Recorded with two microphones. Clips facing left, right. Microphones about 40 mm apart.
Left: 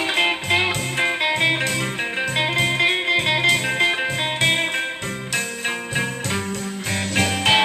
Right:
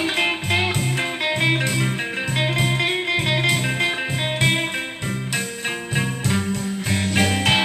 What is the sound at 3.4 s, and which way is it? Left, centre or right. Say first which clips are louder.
Music: left 2 dB; centre.